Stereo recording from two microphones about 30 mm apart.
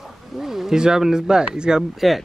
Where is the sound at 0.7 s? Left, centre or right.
Right.